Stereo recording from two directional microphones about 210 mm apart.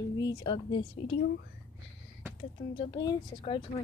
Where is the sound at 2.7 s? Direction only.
20° left (ahead or behind).